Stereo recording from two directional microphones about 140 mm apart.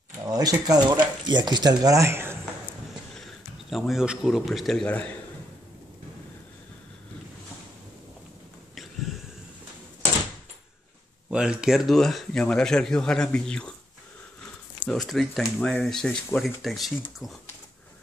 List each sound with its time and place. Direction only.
0.2 s speech: 25° right (ahead or behind)
3.7 s speech: centre (ahead or behind)
11.2 s speech: 5° right (ahead or behind)
14.9 s speech: centre (ahead or behind)